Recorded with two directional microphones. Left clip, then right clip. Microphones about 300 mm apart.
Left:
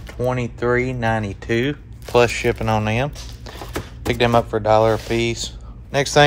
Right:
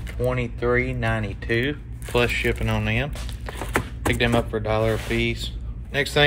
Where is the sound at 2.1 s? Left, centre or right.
Centre.